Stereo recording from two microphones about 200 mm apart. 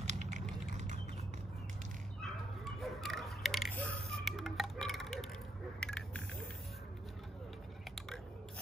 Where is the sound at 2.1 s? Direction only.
Centre (ahead or behind).